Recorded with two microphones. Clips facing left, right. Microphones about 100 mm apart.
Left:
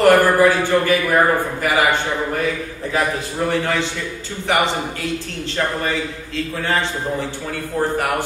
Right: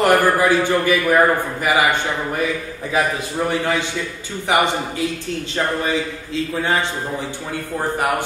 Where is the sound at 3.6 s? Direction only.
15° right (ahead or behind).